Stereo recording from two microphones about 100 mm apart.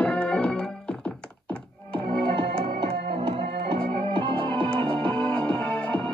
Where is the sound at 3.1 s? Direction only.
60° right (ahead or behind).